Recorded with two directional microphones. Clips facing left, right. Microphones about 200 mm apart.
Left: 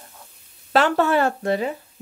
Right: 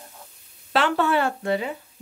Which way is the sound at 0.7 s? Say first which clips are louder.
Left 3 dB; 45° left (ahead or behind).